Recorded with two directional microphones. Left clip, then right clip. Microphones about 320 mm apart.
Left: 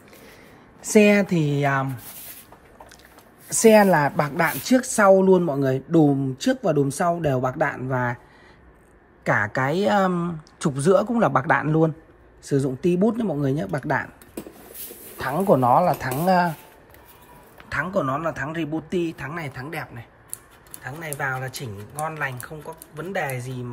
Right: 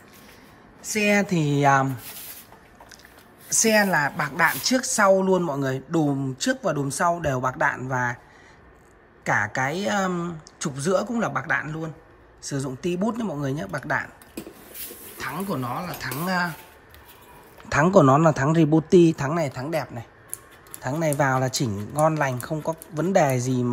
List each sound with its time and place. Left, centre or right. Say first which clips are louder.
0.9 s speech: left 5 dB; centre
3.4 s speech: left 5 dB; centre
9.2 s speech: left 1 dB; centre
14.8 s a sound: left 3 dB; centre
15.3 s speech: left 14 dB; centre
17.6 s speech: right 7 dB; centre